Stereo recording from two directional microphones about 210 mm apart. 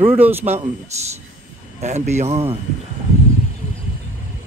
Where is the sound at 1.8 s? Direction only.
35° right (ahead or behind).